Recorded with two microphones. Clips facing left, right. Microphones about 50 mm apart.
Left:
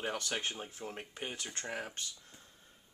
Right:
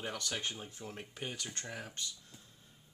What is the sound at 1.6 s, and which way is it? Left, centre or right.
Speech, left.